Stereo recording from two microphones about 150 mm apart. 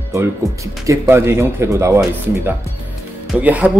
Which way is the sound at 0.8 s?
20° right (ahead or behind).